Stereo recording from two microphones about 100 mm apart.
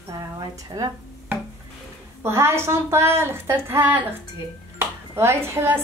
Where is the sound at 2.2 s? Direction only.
25° right (ahead or behind).